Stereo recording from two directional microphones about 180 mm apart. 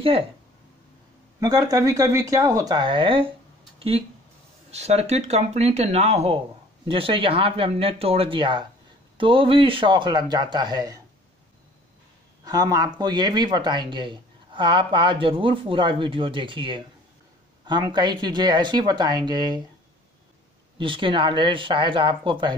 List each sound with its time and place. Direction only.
1.4 s speech: 20° right (ahead or behind)
4.6 s speech: 35° right (ahead or behind); by 11.0 s 20° right (ahead or behind)
12.4 s speech: 20° right (ahead or behind)
20.7 s speech: 30° right (ahead or behind)